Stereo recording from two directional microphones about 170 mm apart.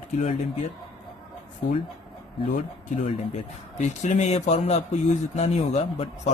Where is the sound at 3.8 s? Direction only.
45° left (ahead or behind).